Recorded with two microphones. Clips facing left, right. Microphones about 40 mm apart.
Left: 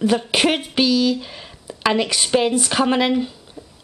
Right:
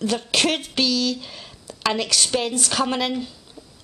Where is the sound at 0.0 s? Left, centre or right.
Centre.